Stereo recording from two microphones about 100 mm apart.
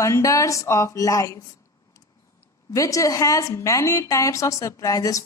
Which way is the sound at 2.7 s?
35° left (ahead or behind).